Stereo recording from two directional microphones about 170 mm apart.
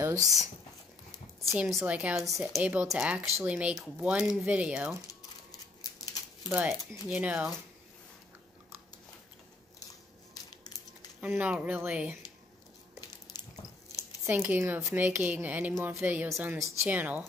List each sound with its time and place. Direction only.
0.0 s a sound: 20° right (ahead or behind)
1.6 s speech: 5° right (ahead or behind)
6.5 s speech: 10° right (ahead or behind)
10.3 s crushing: 20° left (ahead or behind)
11.1 s speech: 10° right (ahead or behind)
14.2 s speech: 15° right (ahead or behind)